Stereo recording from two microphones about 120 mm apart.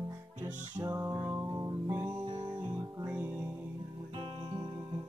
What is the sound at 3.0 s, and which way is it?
Music, 15° right (ahead or behind).